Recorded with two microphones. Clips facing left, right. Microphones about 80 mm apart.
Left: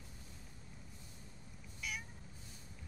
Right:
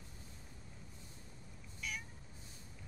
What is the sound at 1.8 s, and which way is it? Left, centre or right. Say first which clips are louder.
Vehicle: even; centre.